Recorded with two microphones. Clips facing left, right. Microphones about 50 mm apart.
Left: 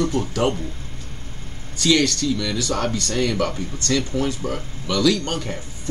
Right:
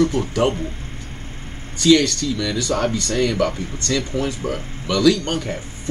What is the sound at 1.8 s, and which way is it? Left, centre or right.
Speech, centre.